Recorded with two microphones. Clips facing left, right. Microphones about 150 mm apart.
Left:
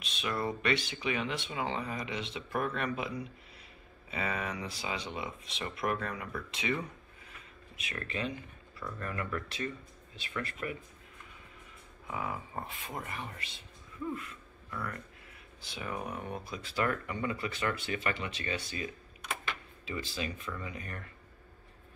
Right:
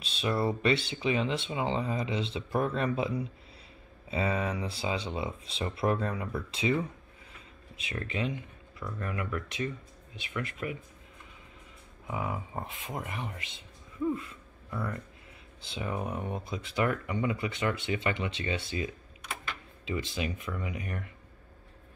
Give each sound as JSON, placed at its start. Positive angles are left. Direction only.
{"t": 0.0, "sound": "speech", "side_deg": -30}
{"t": 12.1, "sound": "a man's voice", "side_deg": -20}
{"t": 19.9, "sound": "speech", "side_deg": -25}